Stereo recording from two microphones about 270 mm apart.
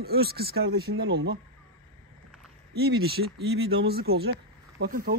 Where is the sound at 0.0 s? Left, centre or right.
Right.